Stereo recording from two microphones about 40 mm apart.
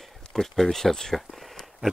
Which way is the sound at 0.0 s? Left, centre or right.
Centre.